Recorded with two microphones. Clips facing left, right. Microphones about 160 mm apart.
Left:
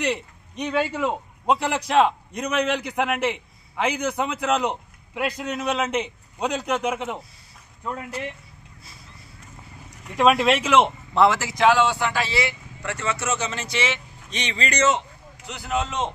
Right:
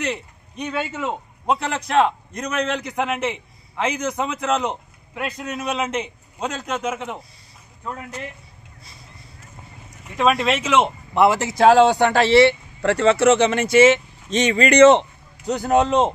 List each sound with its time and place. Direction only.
0.9 s a man's voice: centre (ahead or behind)
4.5 s speech: 15° left (ahead or behind)
5.5 s a man's voice: 5° right (ahead or behind)
5.9 s a man's voice: 10° left (ahead or behind)
10.0 s a man's voice: 5° left (ahead or behind)
11.1 s speech: 20° right (ahead or behind)
11.6 s speech: 35° right (ahead or behind)
12.0 s speech: 60° right (ahead or behind)
12.3 s speech: 30° right (ahead or behind)
13.1 s speech: 65° right (ahead or behind)
15.4 s a man's voice: 45° right (ahead or behind)